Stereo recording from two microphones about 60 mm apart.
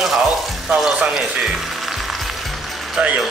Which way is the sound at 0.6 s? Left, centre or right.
Centre.